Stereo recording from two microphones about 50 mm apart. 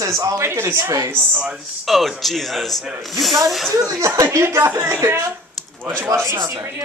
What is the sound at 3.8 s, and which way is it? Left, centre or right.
Speech, right.